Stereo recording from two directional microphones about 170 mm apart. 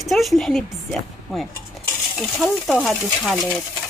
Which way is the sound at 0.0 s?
Centre (ahead or behind).